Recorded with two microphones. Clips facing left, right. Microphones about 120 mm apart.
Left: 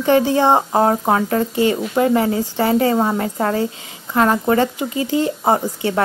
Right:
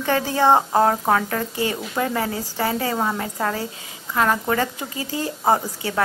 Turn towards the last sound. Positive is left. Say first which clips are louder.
# left 5 dB
turn(degrees=25)  # may be behind; listen again after turning